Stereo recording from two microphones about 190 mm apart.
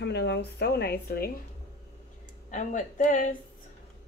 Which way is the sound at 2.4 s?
45° left (ahead or behind).